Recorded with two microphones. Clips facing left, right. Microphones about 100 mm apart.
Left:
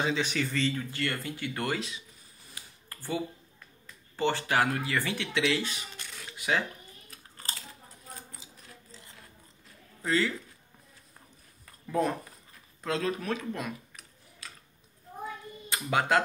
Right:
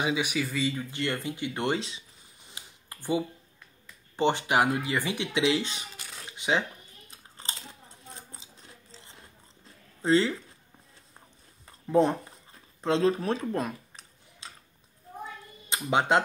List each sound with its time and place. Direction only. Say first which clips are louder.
0.0 s speech: right 1 dB; 10° right (ahead or behind); by 2.0 s 30° right (ahead or behind)
2.5 s a sound: right 1 dB; 20° right (ahead or behind)
4.2 s speech: right 3 dB; 20° right (ahead or behind)
6.3 s a sound: right 2 dB; 20° right (ahead or behind)
7.1 s chewing: right 1 dB; 20° right (ahead or behind)
10.0 s speech: right 5 dB; 25° right (ahead or behind)
11.6 s a sound: right 6 dB; 25° right (ahead or behind)
12.8 s tick-tock: right 6 dB; 30° right (ahead or behind)
15.7 s speech: right 2 dB; 20° right (ahead or behind)